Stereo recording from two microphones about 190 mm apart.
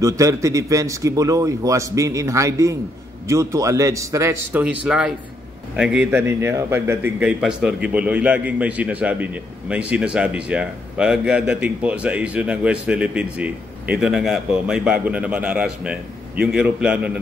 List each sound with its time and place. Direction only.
0.0 s a man's voice: 15° right (ahead or behind)